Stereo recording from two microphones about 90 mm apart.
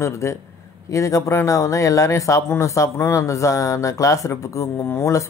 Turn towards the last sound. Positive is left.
turn(degrees=35)  # may be behind; listen again after turning